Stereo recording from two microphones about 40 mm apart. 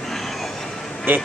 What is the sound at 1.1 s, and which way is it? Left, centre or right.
Speech, right.